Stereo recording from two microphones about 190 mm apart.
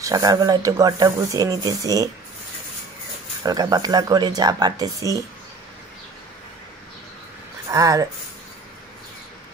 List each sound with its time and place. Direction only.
0.0 s speech: 20° right (ahead or behind)
3.4 s speech: 20° right (ahead or behind)
7.7 s speech: 15° right (ahead or behind)